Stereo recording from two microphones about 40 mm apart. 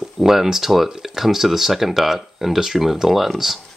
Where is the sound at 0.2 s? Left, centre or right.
Centre.